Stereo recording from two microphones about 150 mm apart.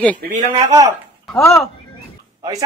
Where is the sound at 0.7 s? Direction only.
25° right (ahead or behind).